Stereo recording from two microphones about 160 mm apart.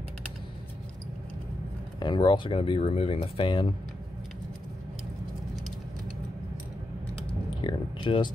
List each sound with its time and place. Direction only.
2.0 s speech: 30° left (ahead or behind)
7.6 s speech: 30° left (ahead or behind)